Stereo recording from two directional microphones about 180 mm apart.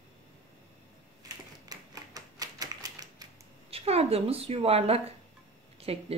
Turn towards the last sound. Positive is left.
turn(degrees=-35)  # may be behind; listen again after turning